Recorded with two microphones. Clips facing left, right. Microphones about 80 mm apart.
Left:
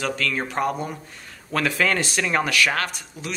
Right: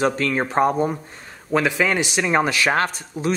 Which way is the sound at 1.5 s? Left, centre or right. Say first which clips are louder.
Right 3 dB; centre.